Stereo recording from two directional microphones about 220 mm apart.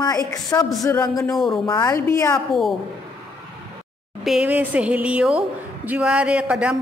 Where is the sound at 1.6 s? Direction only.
20° left (ahead or behind).